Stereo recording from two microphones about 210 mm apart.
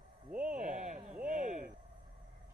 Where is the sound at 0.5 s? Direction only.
35° right (ahead or behind).